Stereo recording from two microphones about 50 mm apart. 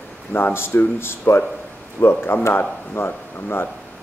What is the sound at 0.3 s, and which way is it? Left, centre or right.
Speech, left.